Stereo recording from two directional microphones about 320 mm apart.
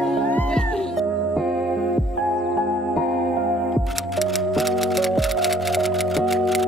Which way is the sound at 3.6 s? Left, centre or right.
Centre.